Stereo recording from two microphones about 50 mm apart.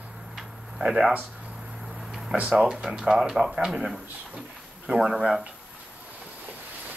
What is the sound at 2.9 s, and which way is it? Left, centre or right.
Speech, centre.